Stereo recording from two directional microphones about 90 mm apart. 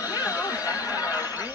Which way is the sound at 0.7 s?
45° left (ahead or behind).